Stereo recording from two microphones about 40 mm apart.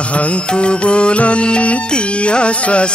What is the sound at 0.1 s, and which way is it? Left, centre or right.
Music, left.